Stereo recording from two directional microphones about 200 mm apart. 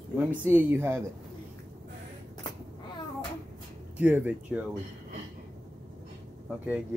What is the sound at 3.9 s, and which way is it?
Speech, 10° right (ahead or behind).